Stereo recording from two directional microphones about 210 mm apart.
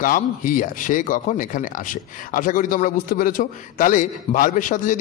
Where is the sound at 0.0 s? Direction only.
40° left (ahead or behind).